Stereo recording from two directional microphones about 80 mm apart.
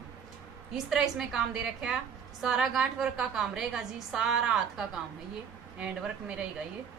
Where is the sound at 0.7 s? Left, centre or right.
Centre.